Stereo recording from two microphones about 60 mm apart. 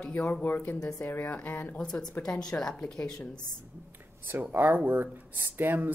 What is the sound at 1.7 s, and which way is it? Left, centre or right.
Speech, centre.